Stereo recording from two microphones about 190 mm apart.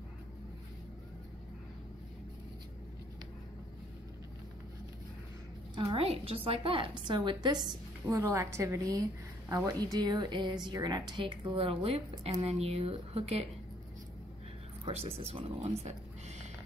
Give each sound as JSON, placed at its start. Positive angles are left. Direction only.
{"t": 5.8, "sound": "speech", "side_deg": -30}
{"t": 14.9, "sound": "speech", "side_deg": -30}